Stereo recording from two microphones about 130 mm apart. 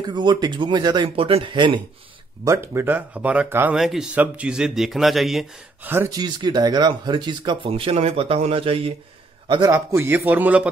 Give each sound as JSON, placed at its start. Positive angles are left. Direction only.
{"t": 0.0, "sound": "speech", "side_deg": -35}
{"t": 1.1, "sound": "speech", "side_deg": -45}
{"t": 2.4, "sound": "speech", "side_deg": -20}
{"t": 3.7, "sound": "speech", "side_deg": -5}
{"t": 5.9, "sound": "speech", "side_deg": -20}
{"t": 6.1, "sound": "speech", "side_deg": -35}
{"t": 9.7, "sound": "speech", "side_deg": -20}